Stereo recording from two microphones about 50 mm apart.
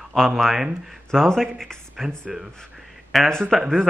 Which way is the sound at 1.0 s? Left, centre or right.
Centre.